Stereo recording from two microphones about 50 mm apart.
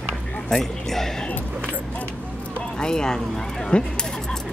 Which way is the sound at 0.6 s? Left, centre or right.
Centre.